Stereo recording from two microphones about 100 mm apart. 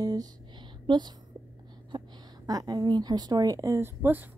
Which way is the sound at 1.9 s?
45° right (ahead or behind).